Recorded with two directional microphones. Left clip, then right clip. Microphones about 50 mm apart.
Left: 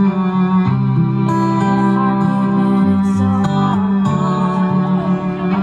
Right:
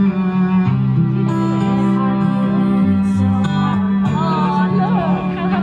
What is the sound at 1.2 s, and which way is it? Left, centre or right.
Music, left.